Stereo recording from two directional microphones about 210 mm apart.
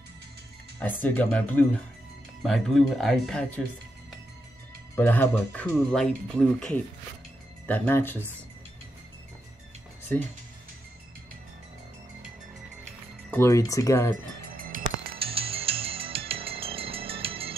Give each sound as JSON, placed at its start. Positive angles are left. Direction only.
{"t": 0.7, "sound": "speech", "side_deg": 10}
{"t": 4.9, "sound": "speech", "side_deg": 10}
{"t": 10.1, "sound": "speech", "side_deg": 10}
{"t": 13.3, "sound": "speech", "side_deg": 15}
{"t": 14.1, "sound": "music", "side_deg": -40}
{"t": 15.1, "sound": "music", "side_deg": -25}